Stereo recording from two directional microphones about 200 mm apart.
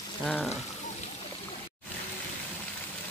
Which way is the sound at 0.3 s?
5° left (ahead or behind).